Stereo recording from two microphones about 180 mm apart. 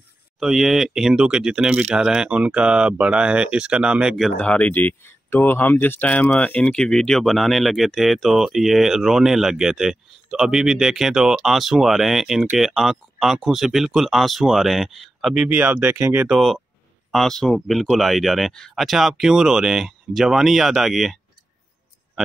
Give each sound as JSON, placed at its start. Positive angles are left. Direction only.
{"t": 0.4, "sound": "speech", "side_deg": 0}